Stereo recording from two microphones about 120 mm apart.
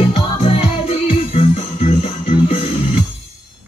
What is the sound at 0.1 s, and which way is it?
Music, 55° left (ahead or behind).